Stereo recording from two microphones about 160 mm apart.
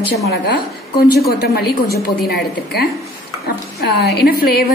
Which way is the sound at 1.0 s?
80° left.